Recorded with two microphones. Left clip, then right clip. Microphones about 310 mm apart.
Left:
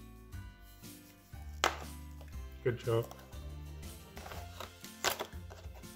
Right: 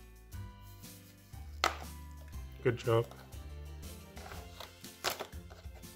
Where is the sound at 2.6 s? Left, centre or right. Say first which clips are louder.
Right 3 dB; centre.